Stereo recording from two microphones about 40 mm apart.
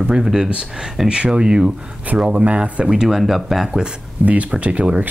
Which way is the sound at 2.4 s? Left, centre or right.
Right.